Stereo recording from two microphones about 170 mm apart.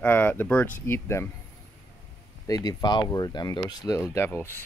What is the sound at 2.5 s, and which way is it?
Speech, 20° left (ahead or behind).